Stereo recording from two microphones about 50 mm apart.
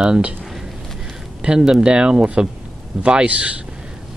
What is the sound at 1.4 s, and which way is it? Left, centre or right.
Speech, centre.